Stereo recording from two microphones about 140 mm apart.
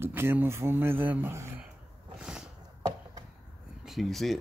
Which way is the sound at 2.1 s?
5° right (ahead or behind).